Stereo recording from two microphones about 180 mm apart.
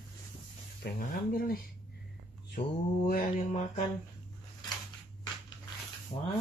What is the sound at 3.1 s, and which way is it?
Mantra, 55° left (ahead or behind).